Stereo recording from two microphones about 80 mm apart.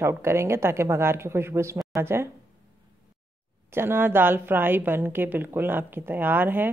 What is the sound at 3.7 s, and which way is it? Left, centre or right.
A woman's voice, right.